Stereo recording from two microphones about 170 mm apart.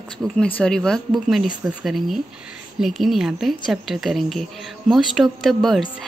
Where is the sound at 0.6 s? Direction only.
5° left (ahead or behind).